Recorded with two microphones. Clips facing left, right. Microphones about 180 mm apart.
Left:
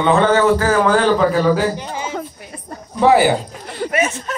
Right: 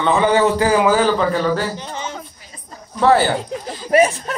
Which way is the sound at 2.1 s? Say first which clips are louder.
Left 7 dB; 60° left (ahead or behind).